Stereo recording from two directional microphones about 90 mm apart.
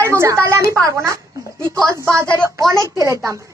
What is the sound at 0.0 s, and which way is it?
A woman's voice, 30° right (ahead or behind).